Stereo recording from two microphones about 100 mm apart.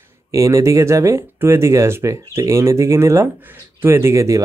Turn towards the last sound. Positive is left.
turn(degrees=-30)  # may be behind; listen again after turning